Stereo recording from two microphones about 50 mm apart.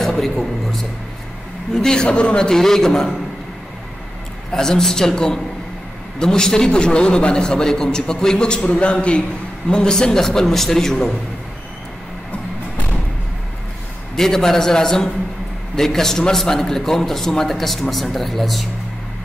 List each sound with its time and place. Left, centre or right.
0.0 s a man's voice: centre
4.5 s a man's voice: centre
14.1 s a man's voice: centre